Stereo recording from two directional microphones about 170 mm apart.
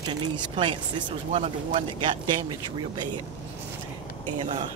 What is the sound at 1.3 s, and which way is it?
Speech, 40° right (ahead or behind).